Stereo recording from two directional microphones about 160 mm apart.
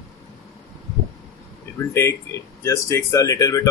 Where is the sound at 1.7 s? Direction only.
15° left (ahead or behind).